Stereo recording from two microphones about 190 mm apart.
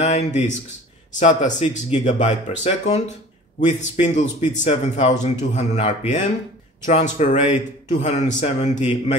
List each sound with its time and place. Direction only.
0.0 s a man's voice: 40° left (ahead or behind)